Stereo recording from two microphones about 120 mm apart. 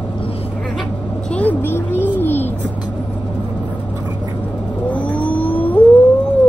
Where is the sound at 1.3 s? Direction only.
15° left (ahead or behind).